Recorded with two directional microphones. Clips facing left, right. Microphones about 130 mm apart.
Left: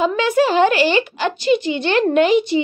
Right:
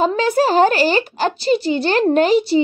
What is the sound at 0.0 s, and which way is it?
A woman's voice, 35° right (ahead or behind).